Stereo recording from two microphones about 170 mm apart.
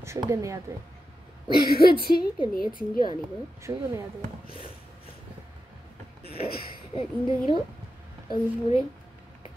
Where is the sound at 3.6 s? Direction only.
15° right (ahead or behind).